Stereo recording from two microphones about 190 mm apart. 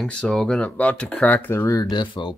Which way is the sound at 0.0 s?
5° left (ahead or behind).